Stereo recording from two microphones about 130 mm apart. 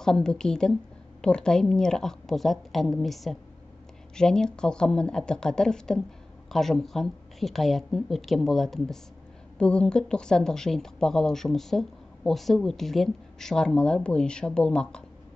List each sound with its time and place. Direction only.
0.0 s a woman's voice: 5° left (ahead or behind)